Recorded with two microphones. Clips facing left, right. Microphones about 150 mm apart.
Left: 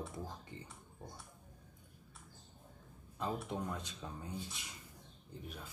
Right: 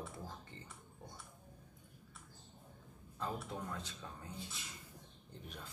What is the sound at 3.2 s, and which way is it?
Speech, 20° left (ahead or behind).